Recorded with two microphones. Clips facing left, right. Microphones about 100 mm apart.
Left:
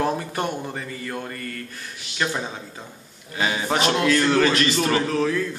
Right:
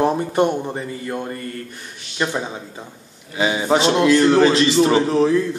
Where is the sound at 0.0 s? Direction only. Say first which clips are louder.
Right 7 dB; 25° right (ahead or behind).